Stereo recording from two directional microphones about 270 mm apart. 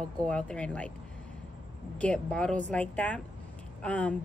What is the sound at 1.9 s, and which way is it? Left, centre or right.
Speech, centre.